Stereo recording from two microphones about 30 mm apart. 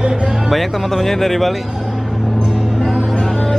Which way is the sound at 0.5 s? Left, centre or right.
Centre.